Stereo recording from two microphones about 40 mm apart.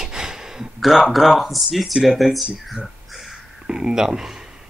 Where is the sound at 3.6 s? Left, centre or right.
Centre.